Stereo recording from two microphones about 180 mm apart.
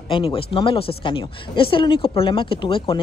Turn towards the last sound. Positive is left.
turn(degrees=30)  # may be behind; listen again after turning